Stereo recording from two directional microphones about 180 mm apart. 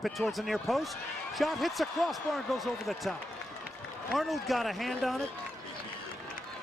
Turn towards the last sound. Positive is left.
turn(degrees=0)  # may be behind; listen again after turning